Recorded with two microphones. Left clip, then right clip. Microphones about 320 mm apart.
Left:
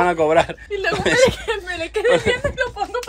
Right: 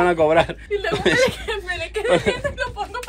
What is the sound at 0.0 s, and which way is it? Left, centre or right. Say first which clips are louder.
Speech: even; centre.